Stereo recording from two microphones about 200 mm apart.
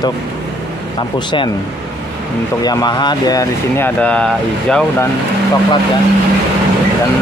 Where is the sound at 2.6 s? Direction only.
20° left (ahead or behind); by 5.0 s 5° left (ahead or behind).